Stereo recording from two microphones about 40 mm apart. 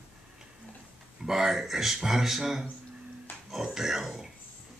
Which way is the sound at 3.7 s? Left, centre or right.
Centre.